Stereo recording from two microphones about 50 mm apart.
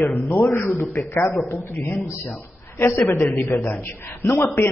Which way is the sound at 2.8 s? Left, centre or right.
Left.